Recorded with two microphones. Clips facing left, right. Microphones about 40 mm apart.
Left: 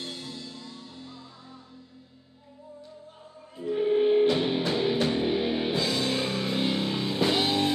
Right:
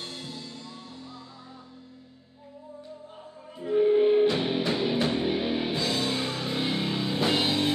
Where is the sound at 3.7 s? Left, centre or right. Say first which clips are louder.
Right 2 dB; centre.